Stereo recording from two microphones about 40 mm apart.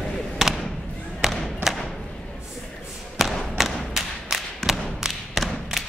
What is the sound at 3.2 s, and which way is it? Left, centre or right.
Thump, centre.